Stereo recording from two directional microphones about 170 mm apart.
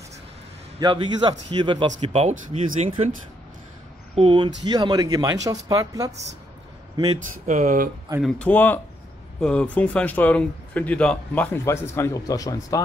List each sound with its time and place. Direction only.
0.7 s speech: 25° right (ahead or behind)
7.4 s speech: 45° right (ahead or behind)
8.2 s speech: 5° left (ahead or behind)